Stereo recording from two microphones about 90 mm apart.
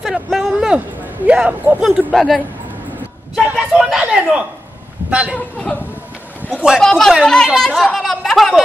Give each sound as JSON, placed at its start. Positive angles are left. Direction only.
{"t": 0.0, "sound": "a sound", "side_deg": -5}
{"t": 0.7, "sound": "speech", "side_deg": -15}
{"t": 1.8, "sound": "speech", "side_deg": -5}
{"t": 3.5, "sound": "a man's voice", "side_deg": -5}
{"t": 6.5, "sound": "a man's voice", "side_deg": -10}
{"t": 6.8, "sound": "speech", "side_deg": 5}